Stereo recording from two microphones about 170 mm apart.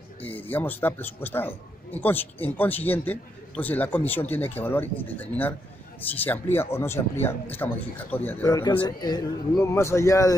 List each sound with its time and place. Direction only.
0.2 s a man's voice: 10° left (ahead or behind)